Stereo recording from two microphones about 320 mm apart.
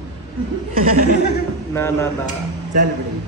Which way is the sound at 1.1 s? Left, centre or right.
Left.